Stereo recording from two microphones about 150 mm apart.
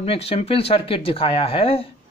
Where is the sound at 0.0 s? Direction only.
40° left (ahead or behind).